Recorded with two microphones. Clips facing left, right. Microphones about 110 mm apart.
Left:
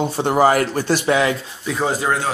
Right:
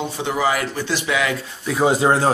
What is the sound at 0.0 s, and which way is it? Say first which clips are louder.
Speech: left 6 dB; 45° left (ahead or behind).